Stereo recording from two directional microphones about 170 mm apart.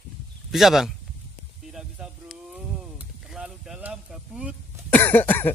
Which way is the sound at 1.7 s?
5° right (ahead or behind).